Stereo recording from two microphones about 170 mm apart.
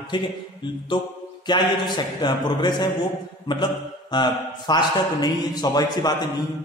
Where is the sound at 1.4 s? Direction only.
25° left (ahead or behind).